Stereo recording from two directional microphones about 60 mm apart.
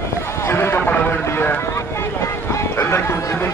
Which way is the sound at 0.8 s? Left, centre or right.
Left.